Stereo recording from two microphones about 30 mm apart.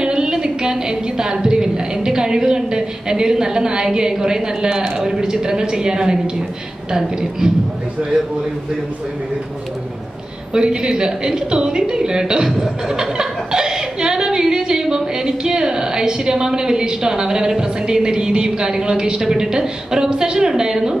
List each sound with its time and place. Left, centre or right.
0.0 s a sound: right
4.2 s a woman's voice: right
10.5 s a woman's voice: right